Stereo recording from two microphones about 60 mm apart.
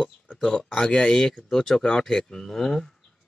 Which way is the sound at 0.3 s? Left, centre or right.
Centre.